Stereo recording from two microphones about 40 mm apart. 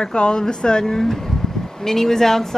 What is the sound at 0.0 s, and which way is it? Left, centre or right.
Speech, left.